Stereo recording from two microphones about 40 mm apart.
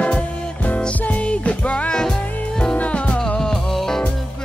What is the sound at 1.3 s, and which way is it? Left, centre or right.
Music, left.